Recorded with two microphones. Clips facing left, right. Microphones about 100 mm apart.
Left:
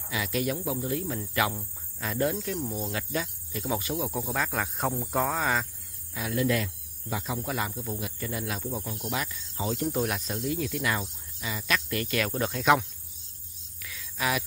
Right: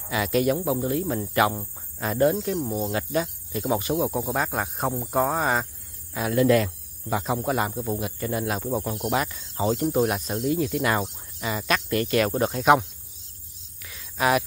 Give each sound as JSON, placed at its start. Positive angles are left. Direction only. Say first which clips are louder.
{"t": 0.1, "sound": "speech", "louder": "right 7 dB", "side_deg": -50}
{"t": 0.7, "sound": "speech", "louder": "right 6 dB", "side_deg": -35}
{"t": 2.9, "sound": "speech", "louder": "right 6 dB", "side_deg": -35}
{"t": 4.1, "sound": "speech", "louder": "right 4 dB", "side_deg": -20}
{"t": 6.1, "sound": "speech", "louder": "right 7 dB", "side_deg": -55}
{"t": 7.3, "sound": "speech", "louder": "right 6 dB", "side_deg": -40}
{"t": 9.8, "sound": "speech", "louder": "right 6 dB", "side_deg": -25}
{"t": 11.0, "sound": "speech", "louder": "right 7 dB", "side_deg": -50}
{"t": 13.8, "sound": "a sound", "louder": "right 7 dB", "side_deg": -35}